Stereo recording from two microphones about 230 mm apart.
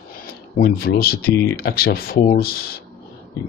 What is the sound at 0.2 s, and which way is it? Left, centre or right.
Speech, left.